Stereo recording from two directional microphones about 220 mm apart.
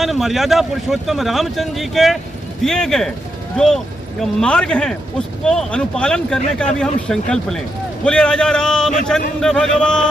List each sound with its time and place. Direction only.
0.0 s a man's voice: centre (ahead or behind)